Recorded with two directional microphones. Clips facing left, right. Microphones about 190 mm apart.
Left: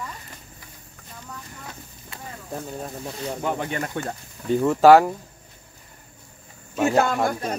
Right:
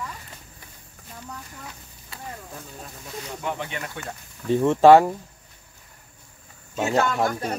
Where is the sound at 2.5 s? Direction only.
40° left (ahead or behind).